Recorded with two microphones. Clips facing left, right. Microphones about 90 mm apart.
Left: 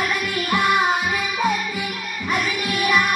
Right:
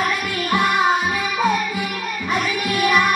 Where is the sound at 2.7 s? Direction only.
15° right (ahead or behind).